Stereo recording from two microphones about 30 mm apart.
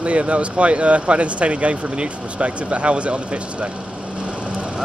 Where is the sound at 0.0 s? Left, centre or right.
Right.